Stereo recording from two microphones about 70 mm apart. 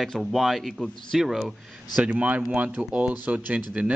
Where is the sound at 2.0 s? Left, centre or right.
Right.